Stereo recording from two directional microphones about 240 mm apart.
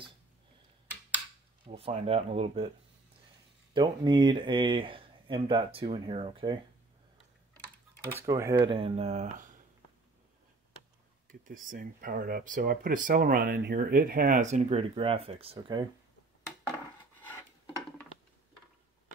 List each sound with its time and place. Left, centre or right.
1.7 s speech: right
3.7 s speech: centre
8.2 s speech: centre; by 9.6 s right
11.4 s speech: right